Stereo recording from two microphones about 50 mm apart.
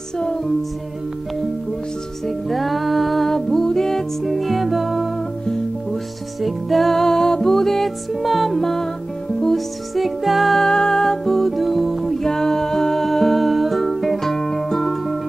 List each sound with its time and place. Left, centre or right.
0.2 s music: centre
2.2 s music: centre
6.4 s music: centre